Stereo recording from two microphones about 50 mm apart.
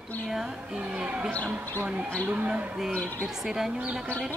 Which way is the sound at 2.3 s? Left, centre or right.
Right.